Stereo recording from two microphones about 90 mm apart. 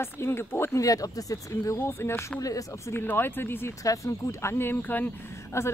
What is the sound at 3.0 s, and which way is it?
Speech, 25° left (ahead or behind).